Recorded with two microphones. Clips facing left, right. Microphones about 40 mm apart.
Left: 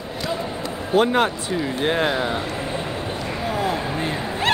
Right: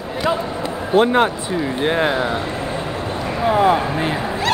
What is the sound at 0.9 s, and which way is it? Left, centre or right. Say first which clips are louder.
Speech: right 3 dB; right.